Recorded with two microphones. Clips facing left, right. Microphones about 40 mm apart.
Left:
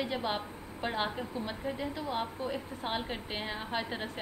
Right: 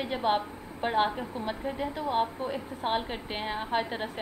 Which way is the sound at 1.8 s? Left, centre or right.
Right.